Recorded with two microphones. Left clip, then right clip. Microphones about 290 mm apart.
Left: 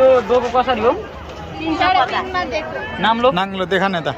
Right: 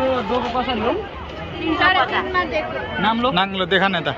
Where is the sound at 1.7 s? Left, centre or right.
Left.